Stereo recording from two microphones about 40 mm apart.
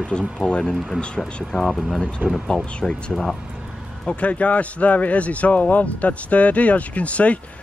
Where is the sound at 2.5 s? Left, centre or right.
Left.